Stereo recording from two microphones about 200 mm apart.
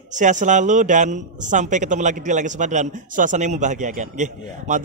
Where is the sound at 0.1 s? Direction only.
40° right (ahead or behind).